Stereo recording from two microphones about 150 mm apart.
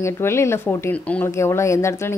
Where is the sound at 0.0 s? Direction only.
20° left (ahead or behind).